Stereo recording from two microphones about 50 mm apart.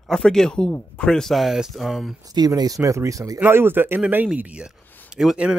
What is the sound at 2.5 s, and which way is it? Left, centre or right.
Speech, right.